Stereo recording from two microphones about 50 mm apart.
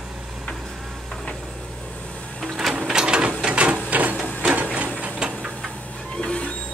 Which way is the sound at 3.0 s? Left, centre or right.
Right.